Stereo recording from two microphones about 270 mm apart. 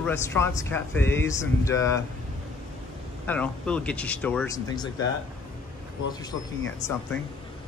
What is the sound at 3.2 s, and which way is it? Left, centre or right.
Speech, centre.